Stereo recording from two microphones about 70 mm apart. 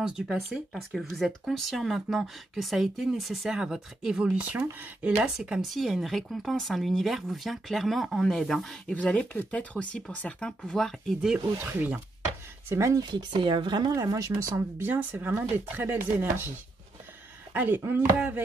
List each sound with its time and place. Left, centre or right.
0.0 s speech: centre
0.5 s speech: centre; by 5.2 s right
5.2 s speech: centre
5.6 s speech: centre
8.8 s speech: centre
11.5 s speech: right
12.6 s speech: right
13.3 s speech: right
14.1 s speech: right
14.8 s speech: right